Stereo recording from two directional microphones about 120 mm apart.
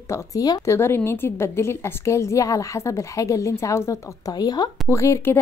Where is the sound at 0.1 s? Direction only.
30° left (ahead or behind).